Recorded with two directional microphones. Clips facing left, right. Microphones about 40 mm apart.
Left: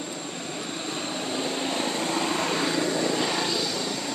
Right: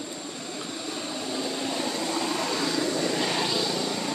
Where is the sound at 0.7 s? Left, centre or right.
Left.